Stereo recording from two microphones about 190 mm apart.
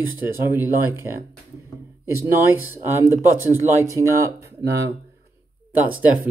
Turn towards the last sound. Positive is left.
turn(degrees=-10)  # may be behind; listen again after turning